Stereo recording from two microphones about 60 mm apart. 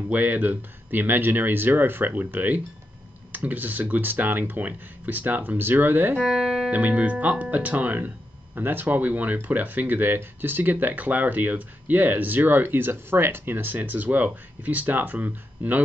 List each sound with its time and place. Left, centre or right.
0.1 s speech: right
6.3 s speech: centre
6.7 s speech: right